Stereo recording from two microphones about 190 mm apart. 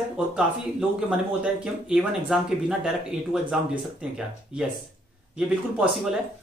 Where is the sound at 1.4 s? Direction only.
5° right (ahead or behind).